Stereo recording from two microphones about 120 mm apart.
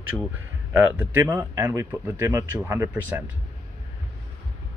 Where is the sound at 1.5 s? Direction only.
25° right (ahead or behind).